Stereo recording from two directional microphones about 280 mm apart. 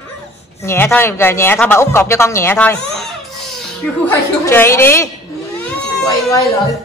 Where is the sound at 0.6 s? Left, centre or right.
Centre.